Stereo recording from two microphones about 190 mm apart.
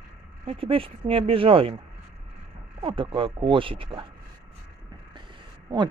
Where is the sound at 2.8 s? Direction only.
25° right (ahead or behind).